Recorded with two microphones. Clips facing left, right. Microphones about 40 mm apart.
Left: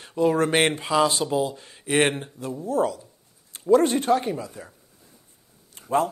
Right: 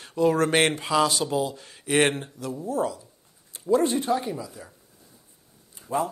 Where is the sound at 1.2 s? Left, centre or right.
Centre.